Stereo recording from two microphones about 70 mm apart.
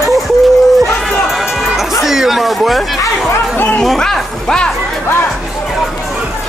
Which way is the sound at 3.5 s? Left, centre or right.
Left.